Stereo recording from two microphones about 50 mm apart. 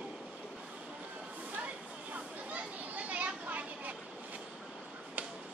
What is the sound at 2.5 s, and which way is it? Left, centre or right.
Children playing, right.